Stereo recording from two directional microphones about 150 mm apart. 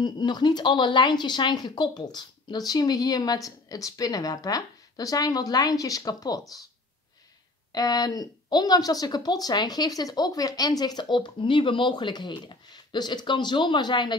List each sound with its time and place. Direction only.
0.0 s speech: 30° left (ahead or behind)
7.7 s speech: 25° left (ahead or behind)